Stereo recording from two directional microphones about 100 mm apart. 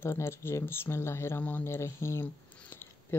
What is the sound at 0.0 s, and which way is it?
Speech, 25° left (ahead or behind).